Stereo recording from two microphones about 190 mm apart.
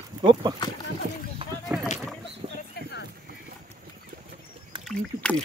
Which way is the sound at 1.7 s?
10° right (ahead or behind).